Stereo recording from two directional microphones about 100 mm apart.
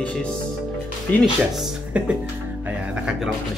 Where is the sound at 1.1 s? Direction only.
15° left (ahead or behind).